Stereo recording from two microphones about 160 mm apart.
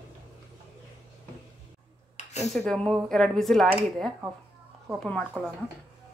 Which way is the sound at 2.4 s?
Centre (ahead or behind).